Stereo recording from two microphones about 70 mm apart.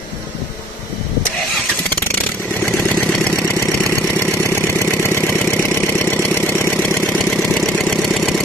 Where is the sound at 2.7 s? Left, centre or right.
Centre.